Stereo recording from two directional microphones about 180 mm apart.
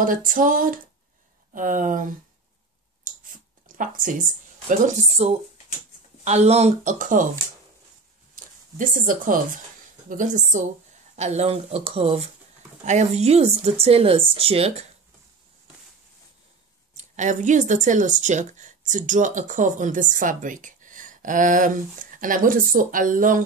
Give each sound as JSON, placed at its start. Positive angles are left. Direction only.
{"t": 0.0, "sound": "speech", "side_deg": -50}
{"t": 3.1, "sound": "chewing", "side_deg": -50}
{"t": 3.6, "sound": "a woman's voice", "side_deg": -50}
{"t": 8.7, "sound": "speech", "side_deg": -50}
{"t": 16.9, "sound": "speech", "side_deg": -40}